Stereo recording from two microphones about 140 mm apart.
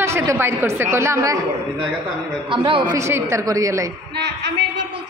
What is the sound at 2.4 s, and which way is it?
Speech, 35° right (ahead or behind).